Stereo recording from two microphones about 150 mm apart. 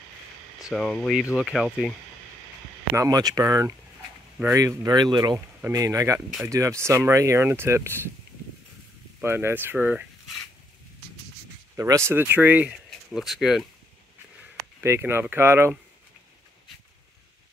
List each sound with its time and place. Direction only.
0.7 s speech: 5° left (ahead or behind)
3.0 s speech: 25° right (ahead or behind)
9.2 s speech: 15° right (ahead or behind)
11.7 s speech: 20° right (ahead or behind); by 13.7 s centre (ahead or behind)
14.8 s speech: 15° right (ahead or behind)